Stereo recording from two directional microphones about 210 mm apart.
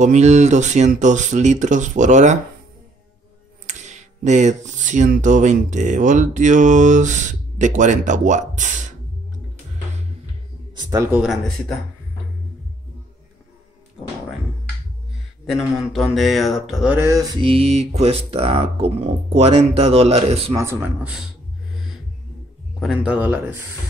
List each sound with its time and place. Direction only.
0.0 s speech: 35° right (ahead or behind)
3.6 s speech: 35° right (ahead or behind)
10.8 s speech: 15° right (ahead or behind)
15.5 s mantra: centre (ahead or behind); by 20.5 s 30° right (ahead or behind)
20.5 s speech: 15° right (ahead or behind)
22.8 s speech: 5° right (ahead or behind)